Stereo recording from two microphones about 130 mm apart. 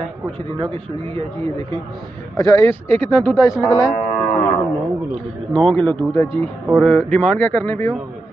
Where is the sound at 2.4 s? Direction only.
20° left (ahead or behind).